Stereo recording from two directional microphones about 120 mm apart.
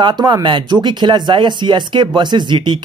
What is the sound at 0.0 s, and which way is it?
Speech, 35° right (ahead or behind).